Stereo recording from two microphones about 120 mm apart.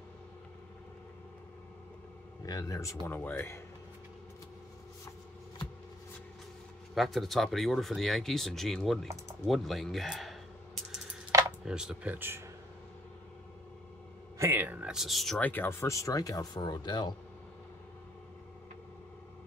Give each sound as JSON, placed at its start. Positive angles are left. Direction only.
{"t": 2.4, "sound": "speech", "side_deg": 30}
{"t": 7.0, "sound": "speech", "side_deg": 0}
{"t": 11.6, "sound": "speech", "side_deg": -5}
{"t": 14.4, "sound": "speech", "side_deg": -15}
{"t": 15.4, "sound": "speech", "side_deg": 15}